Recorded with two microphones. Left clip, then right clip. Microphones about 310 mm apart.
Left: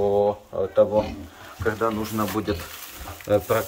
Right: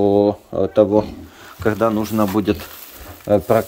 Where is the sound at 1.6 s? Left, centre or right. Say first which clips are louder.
Right 6 dB; right.